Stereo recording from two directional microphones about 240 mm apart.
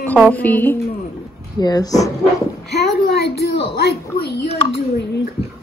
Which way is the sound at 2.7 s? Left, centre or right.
Left.